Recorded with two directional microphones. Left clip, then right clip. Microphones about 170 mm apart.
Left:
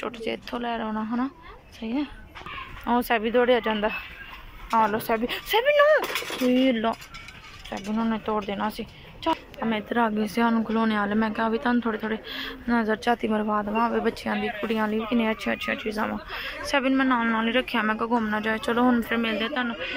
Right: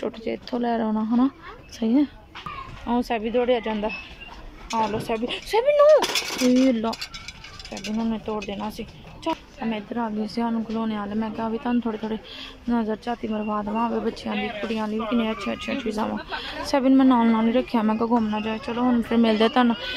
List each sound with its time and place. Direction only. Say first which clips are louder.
0.0 s speech: right 2 dB; 25° right (ahead or behind)
1.8 s speech: right 8 dB; 40° right (ahead or behind)
2.9 s speech: left 2 dB; 15° right (ahead or behind)
8.0 s speech: left 3 dB; 15° right (ahead or behind)
18.2 s speech: left 2 dB; 15° right (ahead or behind)
19.0 s speech: right 5 dB; 25° right (ahead or behind)
19.4 s a man's voice: right 8 dB; 45° right (ahead or behind)